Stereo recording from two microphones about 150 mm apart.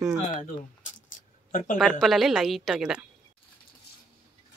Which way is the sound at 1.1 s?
60° left (ahead or behind).